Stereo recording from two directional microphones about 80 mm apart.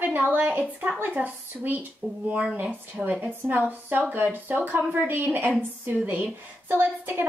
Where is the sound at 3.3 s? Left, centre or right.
Right.